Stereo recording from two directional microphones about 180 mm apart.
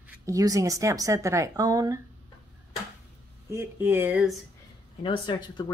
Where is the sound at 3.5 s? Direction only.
10° right (ahead or behind).